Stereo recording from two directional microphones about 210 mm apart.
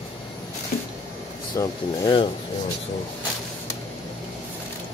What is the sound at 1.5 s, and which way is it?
Speech, 20° left (ahead or behind).